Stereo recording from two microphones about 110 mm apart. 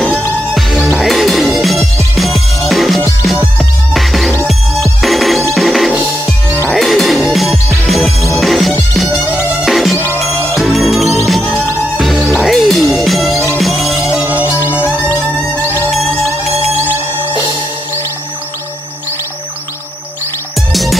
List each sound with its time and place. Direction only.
0.9 s music: centre (ahead or behind)
14.0 s music: 10° right (ahead or behind)
15.0 s music: 20° right (ahead or behind)
15.9 s music: centre (ahead or behind)
20.7 s music: centre (ahead or behind)